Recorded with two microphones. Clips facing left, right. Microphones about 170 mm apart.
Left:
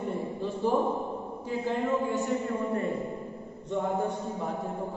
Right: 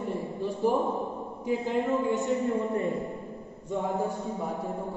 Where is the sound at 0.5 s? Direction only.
15° right (ahead or behind).